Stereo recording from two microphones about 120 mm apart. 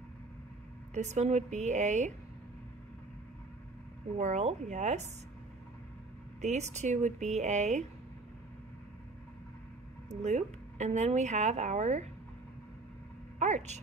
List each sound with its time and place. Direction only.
0.9 s speech: 70° right (ahead or behind)
4.2 s speech: 80° right
6.4 s speech: 70° right (ahead or behind)
10.0 s speech: 70° right (ahead or behind)
13.4 s speech: 75° right (ahead or behind)